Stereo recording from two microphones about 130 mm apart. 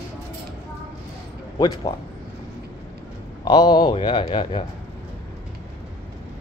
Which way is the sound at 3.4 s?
30° left (ahead or behind).